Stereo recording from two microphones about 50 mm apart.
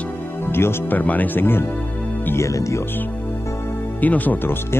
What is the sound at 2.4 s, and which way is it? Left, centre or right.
Speech, left.